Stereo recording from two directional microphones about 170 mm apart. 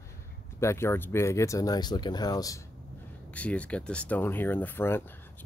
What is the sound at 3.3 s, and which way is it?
Speech, 10° left (ahead or behind).